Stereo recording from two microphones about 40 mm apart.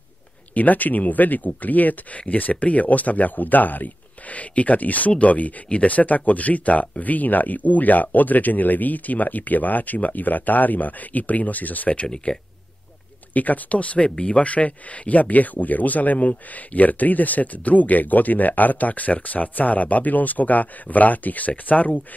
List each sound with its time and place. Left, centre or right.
0.6 s speech: left
12.3 s speech: left